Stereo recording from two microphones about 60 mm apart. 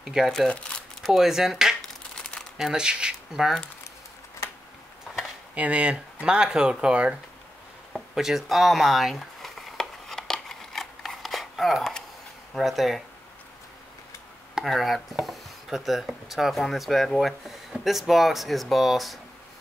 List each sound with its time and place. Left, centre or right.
0.0 s speech: centre
0.5 s speech: centre
1.0 s speech: centre
2.1 s crumpling: centre
2.5 s speech: centre
5.5 s speech: right
7.9 s a sound: centre
12.5 s speech: centre
14.6 s speech: centre